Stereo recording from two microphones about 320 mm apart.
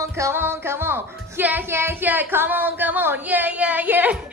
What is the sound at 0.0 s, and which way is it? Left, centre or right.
Music, centre.